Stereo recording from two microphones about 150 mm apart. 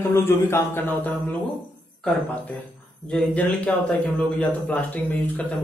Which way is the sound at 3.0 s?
5° left (ahead or behind).